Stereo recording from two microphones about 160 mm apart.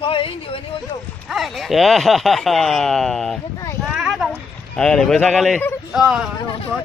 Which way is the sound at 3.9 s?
Centre (ahead or behind).